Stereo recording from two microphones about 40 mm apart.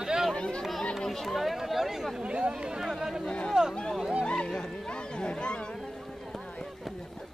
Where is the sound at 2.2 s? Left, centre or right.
Right.